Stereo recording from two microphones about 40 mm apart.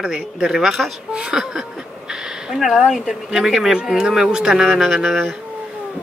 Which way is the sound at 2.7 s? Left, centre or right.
Centre.